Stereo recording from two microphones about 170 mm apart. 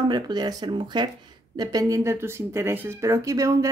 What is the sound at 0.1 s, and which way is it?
Speech, 25° right (ahead or behind).